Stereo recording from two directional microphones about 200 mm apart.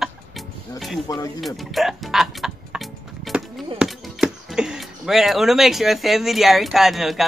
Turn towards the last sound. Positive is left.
turn(degrees=0)  # may be behind; listen again after turning